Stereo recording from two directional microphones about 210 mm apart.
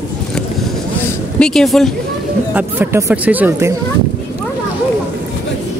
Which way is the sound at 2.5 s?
10° right (ahead or behind).